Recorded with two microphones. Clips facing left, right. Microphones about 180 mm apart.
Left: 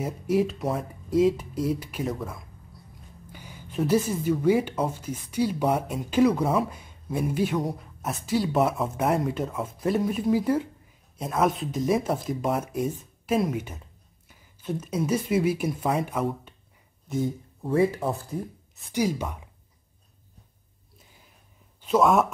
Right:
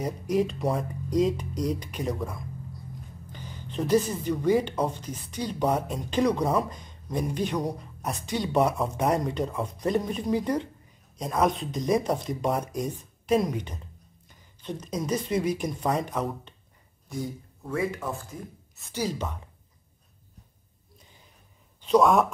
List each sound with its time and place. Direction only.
0.0 s speech: 5° left (ahead or behind)
17.1 s speech: 25° left (ahead or behind)
18.9 s a woman's voice: 10° left (ahead or behind)
21.8 s speech: 5° left (ahead or behind)